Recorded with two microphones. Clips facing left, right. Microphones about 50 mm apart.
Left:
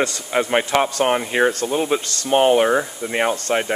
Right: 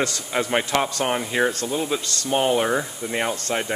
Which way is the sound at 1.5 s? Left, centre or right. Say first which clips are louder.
Left 5 dB; left.